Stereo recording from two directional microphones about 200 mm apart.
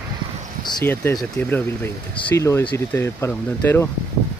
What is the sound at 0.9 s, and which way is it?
Speech, 10° left (ahead or behind).